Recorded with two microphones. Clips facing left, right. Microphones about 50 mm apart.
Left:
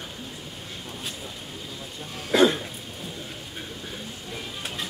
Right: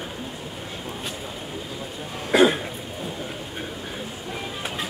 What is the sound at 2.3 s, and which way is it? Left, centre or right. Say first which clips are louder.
Cough: right 2 dB; right.